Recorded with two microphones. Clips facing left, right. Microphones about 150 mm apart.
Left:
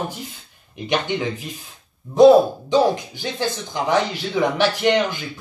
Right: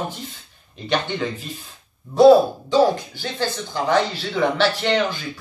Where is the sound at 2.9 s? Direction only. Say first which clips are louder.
Left 2 dB; 15° left (ahead or behind).